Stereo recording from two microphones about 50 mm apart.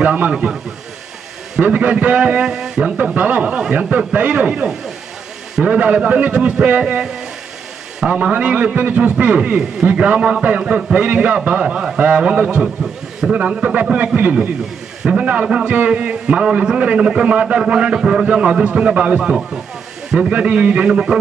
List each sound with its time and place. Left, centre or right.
0.0 s speech: right
0.3 s speech: centre
1.6 s a man's voice: right
3.2 s a man's voice: right
19.1 s a man's voice: centre